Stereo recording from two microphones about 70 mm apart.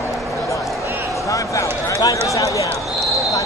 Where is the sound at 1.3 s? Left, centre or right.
Left.